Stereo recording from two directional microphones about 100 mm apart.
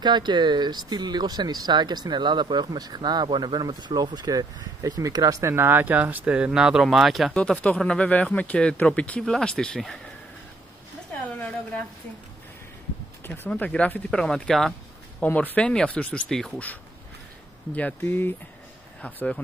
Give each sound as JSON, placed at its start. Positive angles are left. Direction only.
{"t": 0.0, "sound": "speech", "side_deg": -50}
{"t": 7.3, "sound": "speech", "side_deg": 10}
{"t": 11.3, "sound": "a sound", "side_deg": 15}
{"t": 13.5, "sound": "speech", "side_deg": 10}
{"t": 17.7, "sound": "speech", "side_deg": 20}